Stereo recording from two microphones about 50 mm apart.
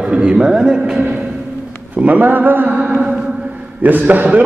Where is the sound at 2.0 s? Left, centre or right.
Right.